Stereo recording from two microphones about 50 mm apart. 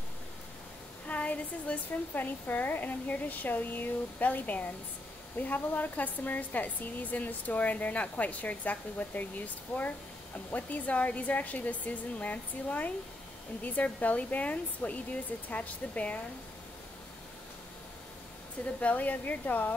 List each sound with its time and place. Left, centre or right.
1.0 s a sound: left
2.1 s a woman's voice: left
18.8 s a woman's voice: left